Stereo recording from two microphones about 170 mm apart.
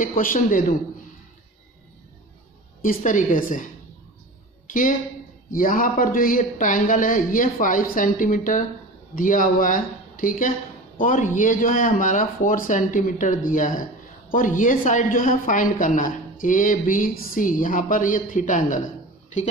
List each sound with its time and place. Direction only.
0.0 s a woman's voice: 55° left (ahead or behind)
2.8 s a woman's voice: 50° left (ahead or behind)
4.6 s a woman's voice: 50° left (ahead or behind)